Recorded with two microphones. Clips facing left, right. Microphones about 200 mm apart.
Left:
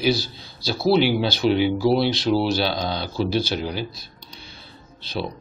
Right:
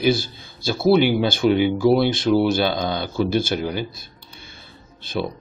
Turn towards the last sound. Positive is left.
turn(degrees=-50)  # may be behind; listen again after turning